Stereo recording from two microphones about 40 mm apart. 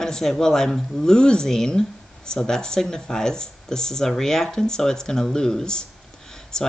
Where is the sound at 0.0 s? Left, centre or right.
Centre.